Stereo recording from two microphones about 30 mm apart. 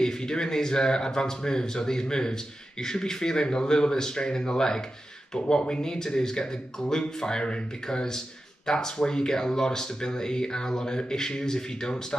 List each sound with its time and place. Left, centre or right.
0.0 s speech: centre